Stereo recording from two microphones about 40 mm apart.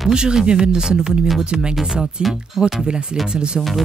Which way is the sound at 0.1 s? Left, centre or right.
Centre.